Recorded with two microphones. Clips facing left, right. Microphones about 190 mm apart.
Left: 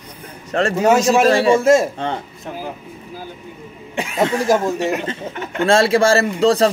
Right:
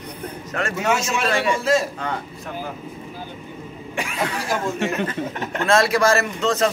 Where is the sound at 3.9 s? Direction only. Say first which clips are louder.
Left 7 dB; 25° left (ahead or behind).